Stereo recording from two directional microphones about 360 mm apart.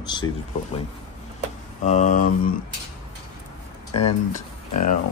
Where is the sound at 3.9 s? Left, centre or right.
Left.